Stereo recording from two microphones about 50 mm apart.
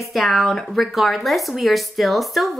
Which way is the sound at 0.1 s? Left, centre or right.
Centre.